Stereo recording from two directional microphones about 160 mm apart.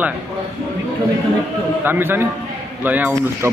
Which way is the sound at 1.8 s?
15° right (ahead or behind).